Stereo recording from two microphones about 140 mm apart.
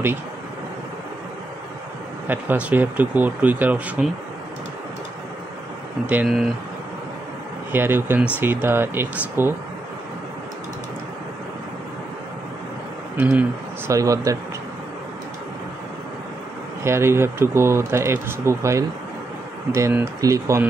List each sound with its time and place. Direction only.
2.2 s speech: 15° right (ahead or behind)
6.0 s speech: 5° right (ahead or behind)
7.7 s speech: 15° right (ahead or behind)
13.2 s speech: 10° right (ahead or behind)
13.9 s speech: 25° right (ahead or behind)
16.8 s speech: 20° right (ahead or behind)